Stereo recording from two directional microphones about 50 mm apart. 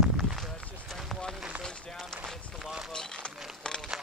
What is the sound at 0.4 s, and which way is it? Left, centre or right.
Run, centre.